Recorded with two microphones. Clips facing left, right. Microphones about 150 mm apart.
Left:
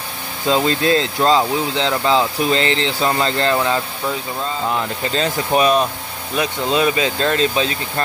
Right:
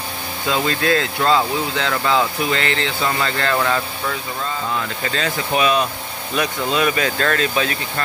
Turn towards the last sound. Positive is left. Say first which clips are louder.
# left 2 dB
turn(degrees=25)  # may be behind; listen again after turning